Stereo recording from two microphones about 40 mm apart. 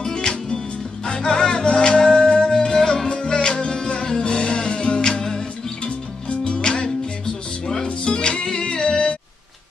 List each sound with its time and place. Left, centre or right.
0.0 s music: left
5.9 s music: left